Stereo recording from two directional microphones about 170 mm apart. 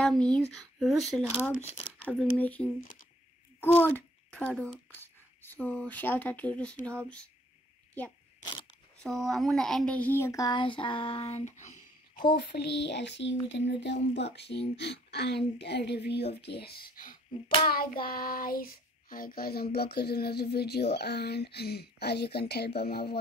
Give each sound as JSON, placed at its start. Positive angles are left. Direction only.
{"t": 0.0, "sound": "speech", "side_deg": 5}
{"t": 1.6, "sound": "speech", "side_deg": 35}
{"t": 2.0, "sound": "a child's voice", "side_deg": 10}
{"t": 9.0, "sound": "speech", "side_deg": 0}
{"t": 12.4, "sound": "speech", "side_deg": 75}
{"t": 17.6, "sound": "child singing", "side_deg": 60}
{"t": 20.5, "sound": "speech", "side_deg": 70}